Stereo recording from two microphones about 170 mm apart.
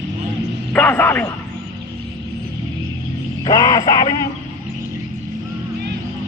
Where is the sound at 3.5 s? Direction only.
20° left (ahead or behind).